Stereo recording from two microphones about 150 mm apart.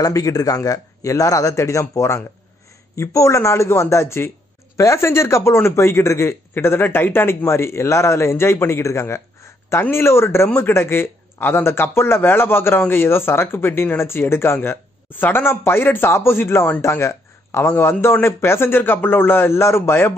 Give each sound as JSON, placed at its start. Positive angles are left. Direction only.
{"t": 0.0, "sound": "a man's voice", "side_deg": 25}